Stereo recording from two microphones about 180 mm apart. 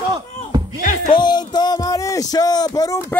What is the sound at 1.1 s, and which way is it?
Music, 25° left (ahead or behind).